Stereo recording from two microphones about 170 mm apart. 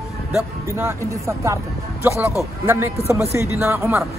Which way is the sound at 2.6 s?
15° right (ahead or behind).